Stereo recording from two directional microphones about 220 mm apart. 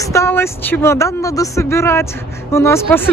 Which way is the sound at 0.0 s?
10° left (ahead or behind).